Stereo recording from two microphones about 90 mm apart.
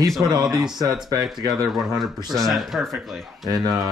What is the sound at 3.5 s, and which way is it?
Speech, 45° right (ahead or behind).